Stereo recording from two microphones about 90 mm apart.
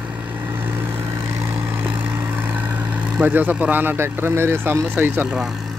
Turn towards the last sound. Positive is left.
turn(degrees=-25)  # may be behind; listen again after turning